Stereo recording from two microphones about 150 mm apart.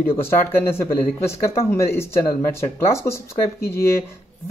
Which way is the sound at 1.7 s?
15° left (ahead or behind).